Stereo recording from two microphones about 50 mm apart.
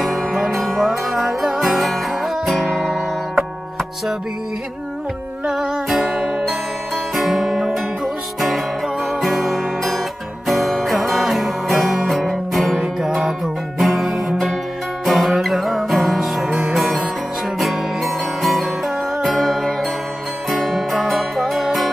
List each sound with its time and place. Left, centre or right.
0.0 s music: centre
5.5 s music: centre
6.1 s music: centre
7.2 s music: centre
12.8 s music: centre
13.7 s music: centre